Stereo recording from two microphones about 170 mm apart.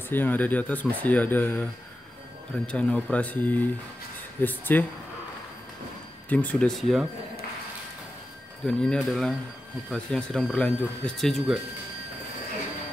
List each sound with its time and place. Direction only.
0.1 s speech: 10° left (ahead or behind)
6.2 s speech: 10° left (ahead or behind)
8.6 s speech: 5° left (ahead or behind)